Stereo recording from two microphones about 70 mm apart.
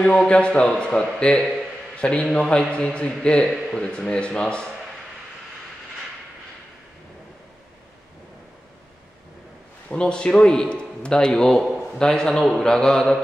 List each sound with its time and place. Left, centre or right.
0.0 s a man's voice: centre
9.8 s a man's voice: centre